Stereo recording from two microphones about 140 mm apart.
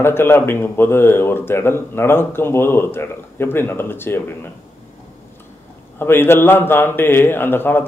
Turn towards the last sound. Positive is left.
turn(degrees=15)  # may be behind; listen again after turning